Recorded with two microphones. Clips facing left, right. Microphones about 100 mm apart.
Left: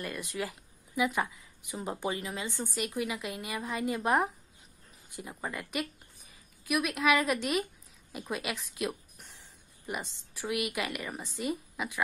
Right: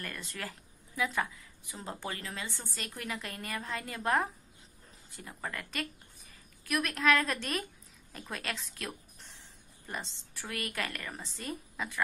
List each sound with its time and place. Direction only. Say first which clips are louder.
0.0 s a woman's voice: left 5 dB; 15° left (ahead or behind)